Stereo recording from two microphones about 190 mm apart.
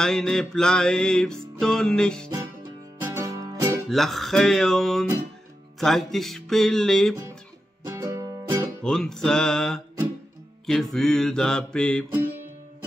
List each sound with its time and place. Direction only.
0.0 s music: 5° left (ahead or behind)
2.2 s music: 15° right (ahead or behind)
3.9 s music: centre (ahead or behind)
7.8 s music: 15° right (ahead or behind)
8.8 s music: 5° left (ahead or behind)